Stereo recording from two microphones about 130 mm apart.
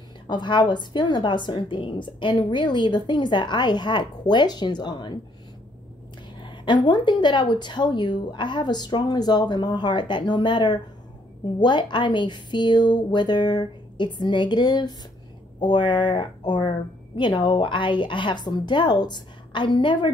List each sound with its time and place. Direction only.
0.3 s a woman's voice: 35° left (ahead or behind)
6.4 s a woman's voice: 35° left (ahead or behind)